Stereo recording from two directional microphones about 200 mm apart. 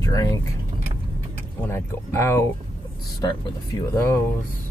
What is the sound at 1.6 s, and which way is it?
Speech, 15° left (ahead or behind).